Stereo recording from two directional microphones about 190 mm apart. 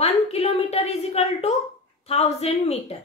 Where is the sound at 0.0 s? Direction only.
35° left (ahead or behind).